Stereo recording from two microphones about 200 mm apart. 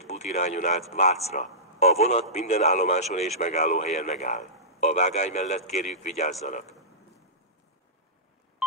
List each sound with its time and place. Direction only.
0.0 s a man's voice: 35° left (ahead or behind)